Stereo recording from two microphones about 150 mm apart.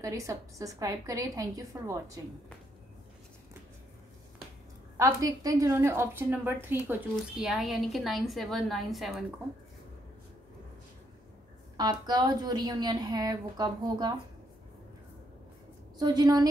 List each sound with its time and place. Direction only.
0.0 s a woman's voice: 20° right (ahead or behind)
4.9 s a woman's voice: 20° right (ahead or behind)
7.3 s a woman's voice: centre (ahead or behind)
11.7 s a woman's voice: 25° right (ahead or behind)
16.0 s a woman's voice: 25° right (ahead or behind)